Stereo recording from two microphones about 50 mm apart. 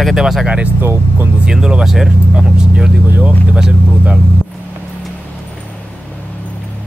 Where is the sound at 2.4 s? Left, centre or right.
Centre.